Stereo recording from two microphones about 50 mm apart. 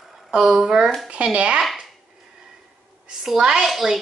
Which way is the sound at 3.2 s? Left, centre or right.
Centre.